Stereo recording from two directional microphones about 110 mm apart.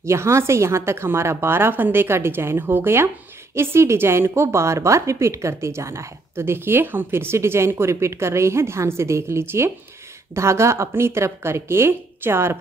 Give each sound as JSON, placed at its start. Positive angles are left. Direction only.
{"t": 0.0, "sound": "a woman's voice", "side_deg": -25}